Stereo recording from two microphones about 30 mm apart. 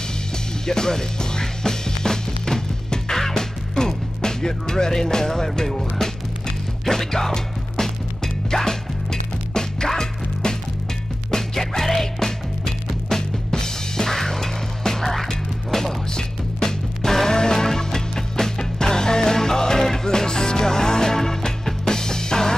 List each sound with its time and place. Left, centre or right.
0.7 s music: centre
6.9 s music: centre
11.2 s music: centre